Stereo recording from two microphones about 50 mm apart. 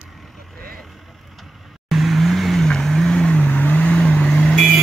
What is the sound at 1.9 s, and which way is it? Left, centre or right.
Vehicle, centre.